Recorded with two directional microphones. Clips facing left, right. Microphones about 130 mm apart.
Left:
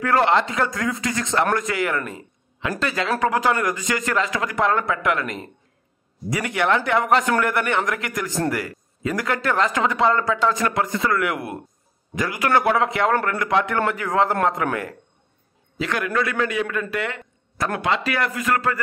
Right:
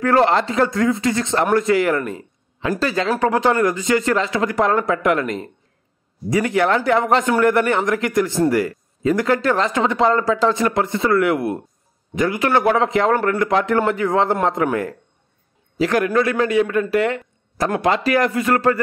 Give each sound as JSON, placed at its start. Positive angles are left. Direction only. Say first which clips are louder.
{"t": 0.0, "sound": "a man's voice", "louder": "right 3 dB", "side_deg": -35}
{"t": 16.9, "sound": "a sound", "louder": "right 8 dB", "side_deg": -35}
{"t": 17.7, "sound": "speech", "louder": "right 6 dB", "side_deg": -35}